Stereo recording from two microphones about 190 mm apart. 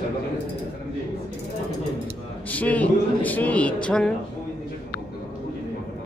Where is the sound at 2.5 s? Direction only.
10° left (ahead or behind).